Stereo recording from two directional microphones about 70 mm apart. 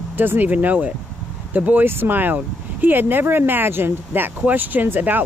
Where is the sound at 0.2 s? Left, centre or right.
Right.